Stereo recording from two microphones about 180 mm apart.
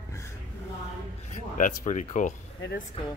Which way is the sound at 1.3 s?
45° left (ahead or behind).